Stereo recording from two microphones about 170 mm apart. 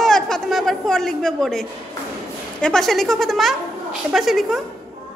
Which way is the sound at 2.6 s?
5° left (ahead or behind).